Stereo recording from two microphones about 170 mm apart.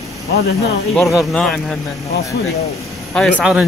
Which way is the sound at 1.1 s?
Centre (ahead or behind).